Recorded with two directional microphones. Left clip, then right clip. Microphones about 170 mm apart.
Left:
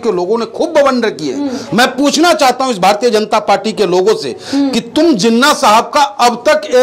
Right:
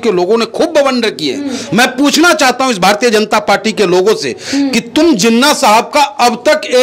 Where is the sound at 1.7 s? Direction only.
40° right (ahead or behind).